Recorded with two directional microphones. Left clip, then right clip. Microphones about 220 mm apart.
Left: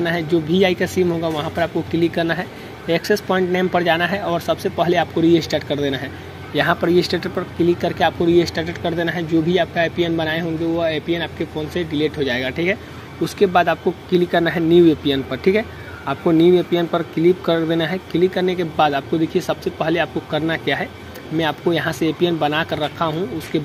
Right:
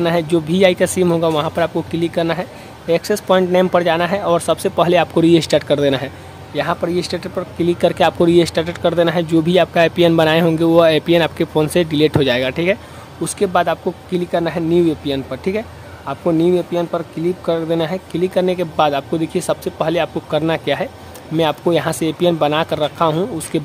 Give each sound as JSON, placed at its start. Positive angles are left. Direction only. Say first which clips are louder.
{"t": 0.0, "sound": "speech", "louder": "right 3 dB", "side_deg": -15}
{"t": 6.5, "sound": "speech", "louder": "left 2 dB", "side_deg": 0}
{"t": 7.6, "sound": "speech", "louder": "right 3 dB", "side_deg": -20}
{"t": 13.2, "sound": "speech", "louder": "even", "side_deg": -10}